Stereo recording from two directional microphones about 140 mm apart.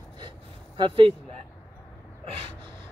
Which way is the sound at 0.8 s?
40° right (ahead or behind).